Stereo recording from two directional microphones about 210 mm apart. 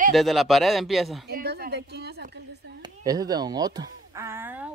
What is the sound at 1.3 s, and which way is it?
A woman's voice, 50° right (ahead or behind).